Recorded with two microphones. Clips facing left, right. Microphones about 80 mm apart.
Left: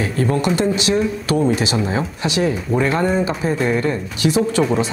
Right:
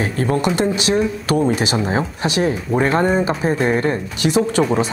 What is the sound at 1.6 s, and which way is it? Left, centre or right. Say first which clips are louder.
Speech: right 1 dB; right.